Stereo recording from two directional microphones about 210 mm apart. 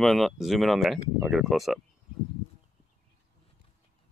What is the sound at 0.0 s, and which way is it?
Speech, centre (ahead or behind).